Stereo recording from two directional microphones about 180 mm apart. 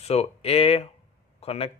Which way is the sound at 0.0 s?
35° left (ahead or behind).